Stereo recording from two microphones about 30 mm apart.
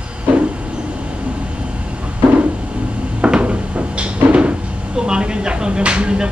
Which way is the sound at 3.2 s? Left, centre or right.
Right.